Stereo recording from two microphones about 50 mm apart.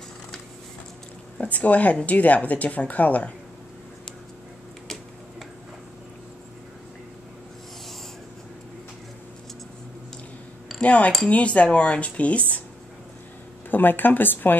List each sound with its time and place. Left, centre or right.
1.4 s a woman's voice: left
10.8 s speech: left
13.7 s a woman's voice: left